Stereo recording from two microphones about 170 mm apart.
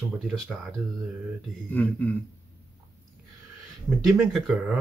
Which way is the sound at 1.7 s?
10° left (ahead or behind).